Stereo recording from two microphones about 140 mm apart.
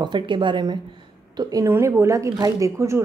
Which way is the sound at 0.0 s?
35° right (ahead or behind).